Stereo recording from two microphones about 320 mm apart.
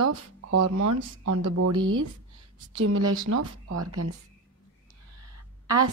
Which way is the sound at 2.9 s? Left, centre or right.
Right.